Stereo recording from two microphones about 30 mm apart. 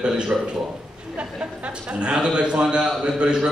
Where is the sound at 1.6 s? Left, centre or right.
Right.